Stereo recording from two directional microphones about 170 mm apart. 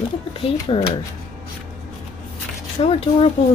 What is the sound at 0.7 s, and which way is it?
Speech, 30° left (ahead or behind).